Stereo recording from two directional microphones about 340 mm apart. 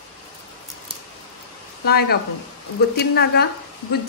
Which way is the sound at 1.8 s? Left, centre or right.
Left.